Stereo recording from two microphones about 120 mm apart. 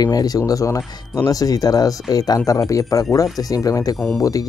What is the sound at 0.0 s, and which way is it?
Speech, 30° left (ahead or behind).